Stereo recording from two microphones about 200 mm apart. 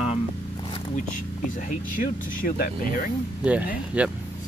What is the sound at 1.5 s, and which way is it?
Speech, 40° left (ahead or behind).